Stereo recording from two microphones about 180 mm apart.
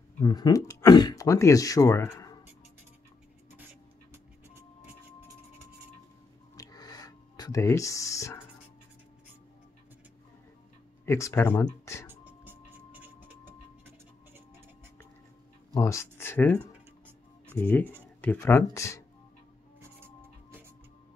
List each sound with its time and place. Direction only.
0.2 s speech: 20° left (ahead or behind)
6.5 s a sound: 20° left (ahead or behind)
11.1 s speech: 15° left (ahead or behind)
12.1 s music: 10° right (ahead or behind)
15.7 s speech: 15° left (ahead or behind)